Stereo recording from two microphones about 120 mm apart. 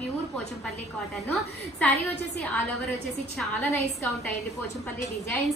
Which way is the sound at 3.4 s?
Centre (ahead or behind).